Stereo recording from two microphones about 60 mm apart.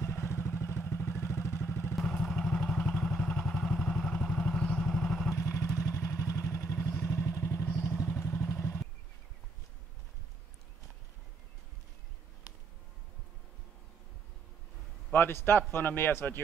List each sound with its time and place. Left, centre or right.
0.0 s vehicle: left
2.0 s vehicle: centre
5.3 s vehicle: left
15.1 s a man's voice: left